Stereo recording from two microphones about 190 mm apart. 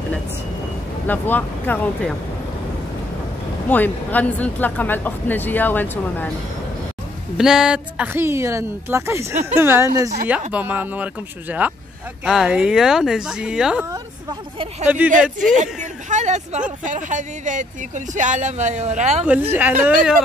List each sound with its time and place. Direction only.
1.0 s speech: 10° left (ahead or behind)
3.6 s speech: 10° left (ahead or behind)
7.3 s speech: 5° right (ahead or behind)
15.1 s speech: 5° right (ahead or behind)
15.5 s speech: 40° right (ahead or behind)
19.5 s speech: 10° right (ahead or behind)